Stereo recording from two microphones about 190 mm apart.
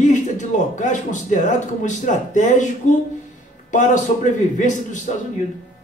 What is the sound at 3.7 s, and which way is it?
Speech, 40° left (ahead or behind).